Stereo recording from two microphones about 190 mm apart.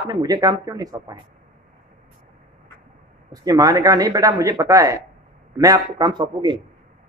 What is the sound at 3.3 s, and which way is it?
A man's voice, 20° right (ahead or behind).